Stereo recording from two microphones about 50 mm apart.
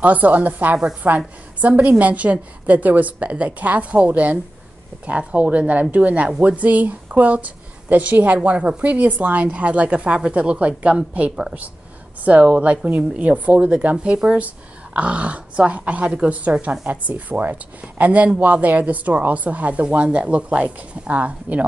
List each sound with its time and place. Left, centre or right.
0.0 s a woman's voice: right